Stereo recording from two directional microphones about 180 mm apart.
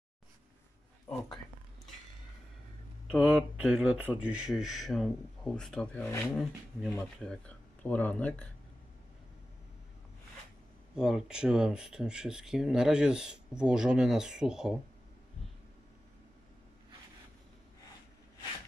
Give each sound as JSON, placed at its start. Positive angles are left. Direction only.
{"t": 3.1, "sound": "speech", "side_deg": -5}
{"t": 11.0, "sound": "speech", "side_deg": -5}